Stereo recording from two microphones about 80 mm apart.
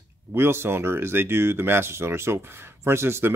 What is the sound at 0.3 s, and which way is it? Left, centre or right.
Speech, right.